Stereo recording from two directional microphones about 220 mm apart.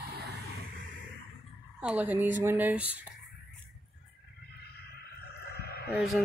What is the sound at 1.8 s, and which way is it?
Speech, 5° right (ahead or behind).